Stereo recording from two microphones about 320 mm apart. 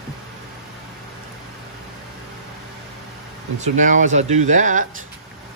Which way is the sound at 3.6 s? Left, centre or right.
Right.